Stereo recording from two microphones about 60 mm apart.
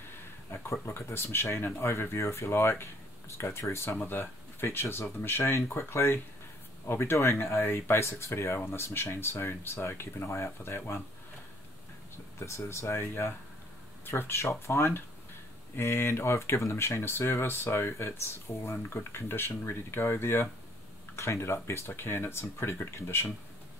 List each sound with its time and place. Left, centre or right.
0.1 s speech: left
3.9 s speech: left
12.4 s speech: left